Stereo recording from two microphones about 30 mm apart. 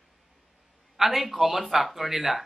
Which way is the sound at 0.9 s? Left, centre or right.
Centre.